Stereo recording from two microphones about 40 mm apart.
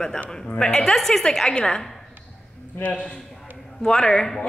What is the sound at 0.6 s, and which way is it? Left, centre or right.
Speech, centre.